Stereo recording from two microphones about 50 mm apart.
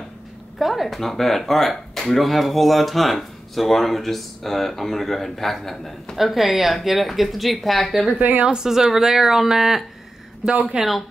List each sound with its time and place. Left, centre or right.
0.6 s speech: centre
8.1 s a woman's voice: right
8.5 s speech: centre
10.5 s speech: right
10.8 s speech: centre